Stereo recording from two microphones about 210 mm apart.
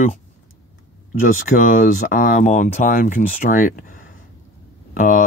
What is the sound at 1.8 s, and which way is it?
Speech, 40° left (ahead or behind).